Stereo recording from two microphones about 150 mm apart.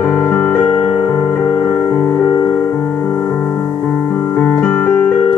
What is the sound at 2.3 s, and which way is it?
Music, 25° left (ahead or behind).